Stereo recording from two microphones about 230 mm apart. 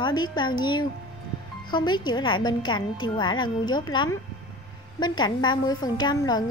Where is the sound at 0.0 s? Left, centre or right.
Centre.